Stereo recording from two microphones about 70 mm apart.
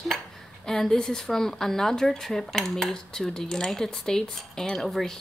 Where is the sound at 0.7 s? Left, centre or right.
Centre.